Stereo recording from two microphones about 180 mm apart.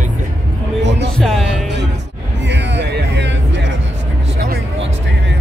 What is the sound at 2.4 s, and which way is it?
Music, 75° right (ahead or behind).